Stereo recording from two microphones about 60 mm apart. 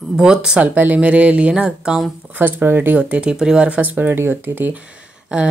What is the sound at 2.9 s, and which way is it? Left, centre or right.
Speech, right.